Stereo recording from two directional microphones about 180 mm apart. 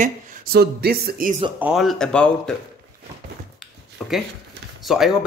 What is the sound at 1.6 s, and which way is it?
Speech, 5° right (ahead or behind).